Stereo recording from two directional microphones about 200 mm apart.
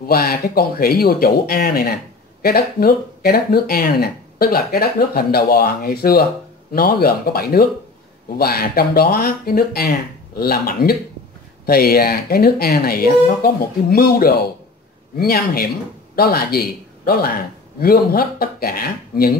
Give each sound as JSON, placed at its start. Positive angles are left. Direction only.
{"t": 0.0, "sound": "speech", "side_deg": 50}